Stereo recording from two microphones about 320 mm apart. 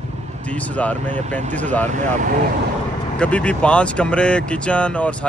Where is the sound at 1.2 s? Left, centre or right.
Right.